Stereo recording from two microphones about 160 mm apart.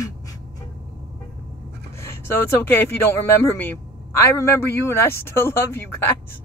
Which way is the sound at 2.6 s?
15° left (ahead or behind).